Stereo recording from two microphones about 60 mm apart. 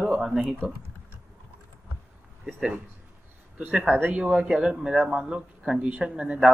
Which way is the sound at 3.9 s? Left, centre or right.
Right.